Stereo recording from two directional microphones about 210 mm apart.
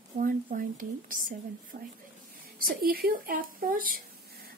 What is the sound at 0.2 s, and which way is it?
Speech, 40° right (ahead or behind).